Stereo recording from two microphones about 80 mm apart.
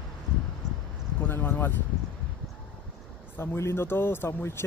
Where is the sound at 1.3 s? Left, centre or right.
Left.